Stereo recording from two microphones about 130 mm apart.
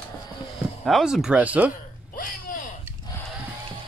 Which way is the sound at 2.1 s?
90° left.